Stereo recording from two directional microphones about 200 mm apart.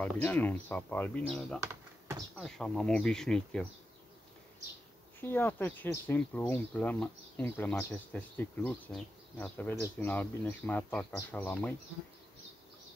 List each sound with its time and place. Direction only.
0.0 s speech: 10° left (ahead or behind)
1.6 s typing: 15° right (ahead or behind)
2.3 s speech: centre (ahead or behind)
5.2 s speech: 10° left (ahead or behind)